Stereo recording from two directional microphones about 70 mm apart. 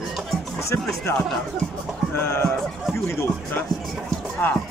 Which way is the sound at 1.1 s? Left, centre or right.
Left.